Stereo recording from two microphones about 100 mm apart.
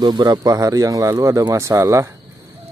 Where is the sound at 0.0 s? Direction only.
40° right (ahead or behind).